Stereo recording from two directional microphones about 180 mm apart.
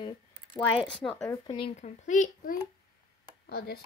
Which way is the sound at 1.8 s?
45° left (ahead or behind).